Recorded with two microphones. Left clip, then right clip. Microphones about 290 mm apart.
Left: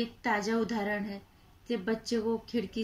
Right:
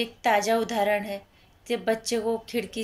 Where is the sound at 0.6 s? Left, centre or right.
Right.